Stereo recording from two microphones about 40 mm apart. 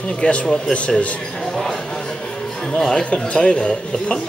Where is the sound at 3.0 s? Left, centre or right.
Left.